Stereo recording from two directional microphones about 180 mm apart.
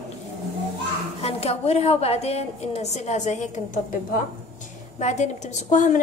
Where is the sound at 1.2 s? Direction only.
35° left (ahead or behind).